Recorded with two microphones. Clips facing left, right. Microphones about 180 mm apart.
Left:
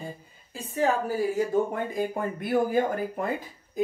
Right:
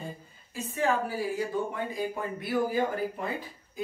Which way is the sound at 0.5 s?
40° left (ahead or behind).